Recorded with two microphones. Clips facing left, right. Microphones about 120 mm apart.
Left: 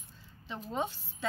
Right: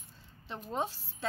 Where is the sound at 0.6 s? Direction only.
35° right (ahead or behind).